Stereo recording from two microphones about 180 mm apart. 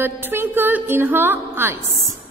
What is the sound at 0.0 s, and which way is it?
A woman's voice, 10° right (ahead or behind).